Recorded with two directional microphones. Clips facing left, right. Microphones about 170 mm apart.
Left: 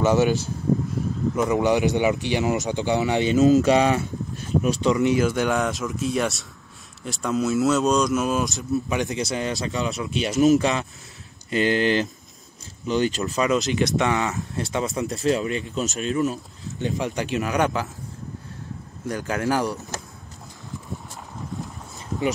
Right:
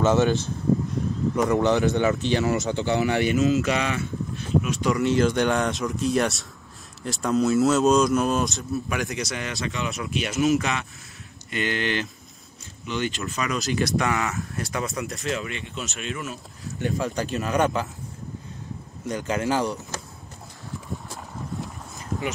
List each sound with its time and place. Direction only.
0.0 s speech: 10° left (ahead or behind)
1.3 s speech: 5° left (ahead or behind)
3.3 s speech: 40° left (ahead or behind); by 8.5 s 5° left (ahead or behind)
8.8 s speech: 20° left (ahead or behind); by 16.3 s 35° left (ahead or behind)
16.6 s speech: 20° left (ahead or behind)
19.0 s speech: 20° right (ahead or behind)